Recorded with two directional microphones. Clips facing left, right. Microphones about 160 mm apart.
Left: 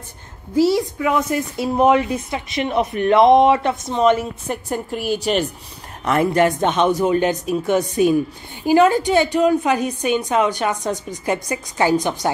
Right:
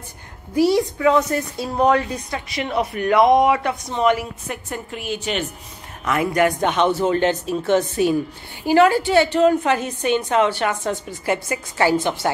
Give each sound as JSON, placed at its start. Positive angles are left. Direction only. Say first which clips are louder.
{"t": 0.6, "sound": "a woman's voice", "louder": "left 1 dB", "side_deg": -20}
{"t": 1.0, "sound": "a woman's voice", "louder": "right 4 dB", "side_deg": 20}
{"t": 4.6, "sound": "a woman's voice", "louder": "left 6 dB", "side_deg": 40}